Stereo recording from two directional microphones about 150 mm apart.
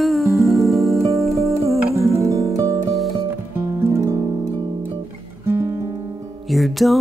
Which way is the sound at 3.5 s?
15° right (ahead or behind).